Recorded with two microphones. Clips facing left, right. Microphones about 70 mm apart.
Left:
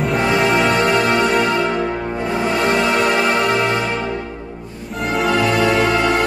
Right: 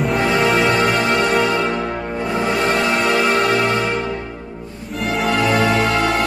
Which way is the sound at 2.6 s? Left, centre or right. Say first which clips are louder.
Left 3 dB; centre.